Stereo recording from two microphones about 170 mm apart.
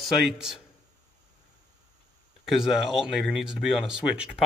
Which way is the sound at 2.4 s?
Centre (ahead or behind).